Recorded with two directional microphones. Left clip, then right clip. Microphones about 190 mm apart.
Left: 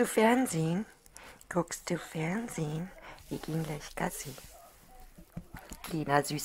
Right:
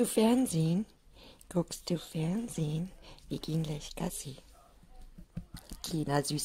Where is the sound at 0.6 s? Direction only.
Centre (ahead or behind).